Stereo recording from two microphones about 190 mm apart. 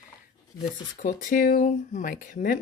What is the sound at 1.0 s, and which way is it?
Speech, 45° left (ahead or behind).